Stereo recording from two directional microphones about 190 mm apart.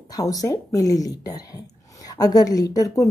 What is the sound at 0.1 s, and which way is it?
A woman's voice, 20° left (ahead or behind).